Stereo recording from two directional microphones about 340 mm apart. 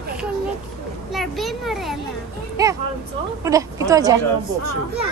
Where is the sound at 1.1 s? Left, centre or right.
Centre.